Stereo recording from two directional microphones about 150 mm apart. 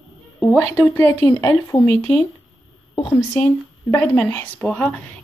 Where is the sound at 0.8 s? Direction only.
15° left (ahead or behind).